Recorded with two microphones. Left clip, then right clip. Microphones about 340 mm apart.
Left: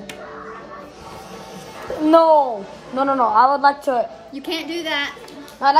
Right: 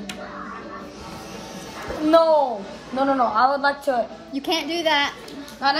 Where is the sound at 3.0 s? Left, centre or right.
Left.